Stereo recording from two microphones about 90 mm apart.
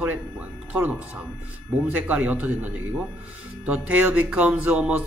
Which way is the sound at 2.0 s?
20° right (ahead or behind).